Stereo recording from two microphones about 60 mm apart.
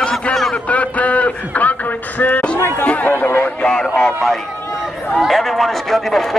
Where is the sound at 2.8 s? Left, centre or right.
Left.